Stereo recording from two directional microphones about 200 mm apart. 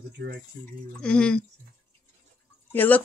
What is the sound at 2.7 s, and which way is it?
Speech, 10° left (ahead or behind).